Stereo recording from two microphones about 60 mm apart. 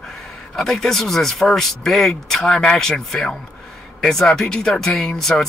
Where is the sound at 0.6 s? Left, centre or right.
Centre.